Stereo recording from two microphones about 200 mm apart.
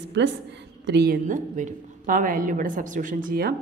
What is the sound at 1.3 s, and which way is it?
A woman's voice, 40° right (ahead or behind).